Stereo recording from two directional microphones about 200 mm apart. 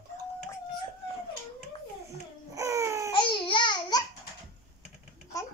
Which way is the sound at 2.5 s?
15° right (ahead or behind).